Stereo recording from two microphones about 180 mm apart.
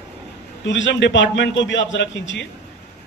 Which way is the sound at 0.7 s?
85° left.